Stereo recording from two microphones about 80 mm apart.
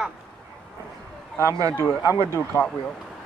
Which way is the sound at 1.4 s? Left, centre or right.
Right.